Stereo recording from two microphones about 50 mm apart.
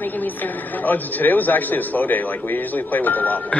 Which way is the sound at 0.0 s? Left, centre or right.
Left.